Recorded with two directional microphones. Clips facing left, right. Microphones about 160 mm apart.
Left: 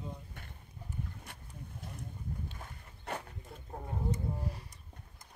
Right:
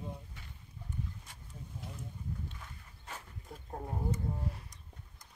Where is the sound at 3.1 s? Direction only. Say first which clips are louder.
Left 8 dB; 65° left (ahead or behind).